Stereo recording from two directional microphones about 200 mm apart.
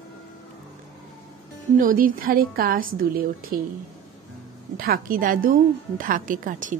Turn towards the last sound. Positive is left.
turn(degrees=-40)  # may be behind; listen again after turning